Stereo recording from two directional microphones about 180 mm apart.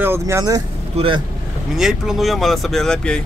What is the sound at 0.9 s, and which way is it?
Speech, 30° right (ahead or behind).